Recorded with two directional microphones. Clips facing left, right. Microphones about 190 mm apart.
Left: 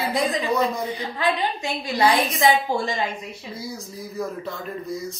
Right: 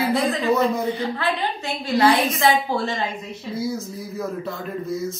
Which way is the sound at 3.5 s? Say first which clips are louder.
Right 9 dB; centre (ahead or behind).